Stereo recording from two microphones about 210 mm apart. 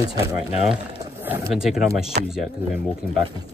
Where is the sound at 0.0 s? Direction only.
15° right (ahead or behind); by 1.9 s centre (ahead or behind).